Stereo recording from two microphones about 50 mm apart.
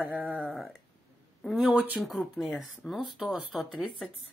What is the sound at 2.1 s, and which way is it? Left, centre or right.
Speech, centre.